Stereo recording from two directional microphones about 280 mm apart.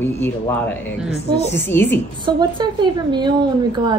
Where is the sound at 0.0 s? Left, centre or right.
Centre.